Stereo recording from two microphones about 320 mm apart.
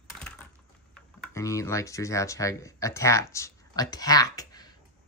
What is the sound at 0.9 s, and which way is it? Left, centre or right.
Speech, centre.